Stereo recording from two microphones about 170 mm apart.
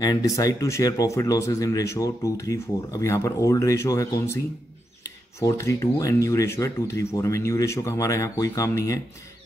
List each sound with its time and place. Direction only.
0.0 s speech: 20° left (ahead or behind)
5.4 s speech: 20° left (ahead or behind)